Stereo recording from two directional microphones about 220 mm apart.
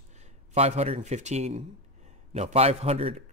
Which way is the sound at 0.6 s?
30° right (ahead or behind).